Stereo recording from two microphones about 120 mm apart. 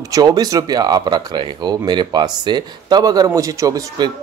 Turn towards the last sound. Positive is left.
turn(degrees=-30)  # may be behind; listen again after turning